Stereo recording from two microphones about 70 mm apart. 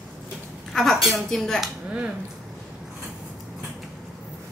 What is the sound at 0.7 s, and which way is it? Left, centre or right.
Speech, centre.